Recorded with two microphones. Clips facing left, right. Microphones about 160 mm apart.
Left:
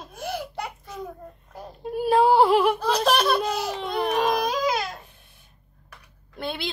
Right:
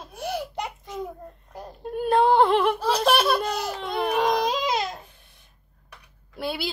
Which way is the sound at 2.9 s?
5° right (ahead or behind).